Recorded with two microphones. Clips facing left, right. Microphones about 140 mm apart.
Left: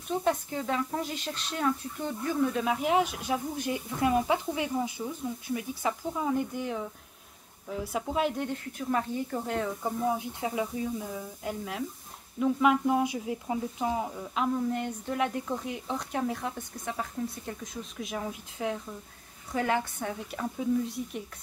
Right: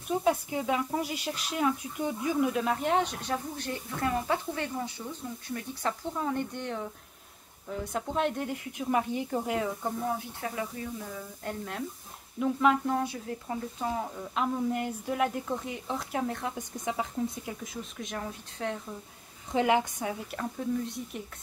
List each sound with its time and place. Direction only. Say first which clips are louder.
0.1 s speech: right 1 dB; 5° right (ahead or behind)
2.6 s speech: left 1 dB; 5° left (ahead or behind)
8.7 s speech: right 2 dB; 15° right (ahead or behind)
10.0 s speech: left 3 dB; 15° left (ahead or behind); by 16.5 s centre (ahead or behind)
16.5 s speech: right 3 dB; 15° right (ahead or behind)
17.5 s speech: even; centre (ahead or behind)
19.5 s speech: right 3 dB; 15° right (ahead or behind)
20.1 s speech: even; centre (ahead or behind)